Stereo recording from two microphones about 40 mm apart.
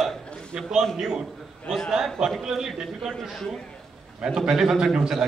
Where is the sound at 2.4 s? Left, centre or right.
Centre.